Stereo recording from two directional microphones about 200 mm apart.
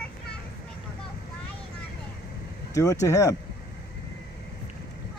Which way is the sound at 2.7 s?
15° left (ahead or behind).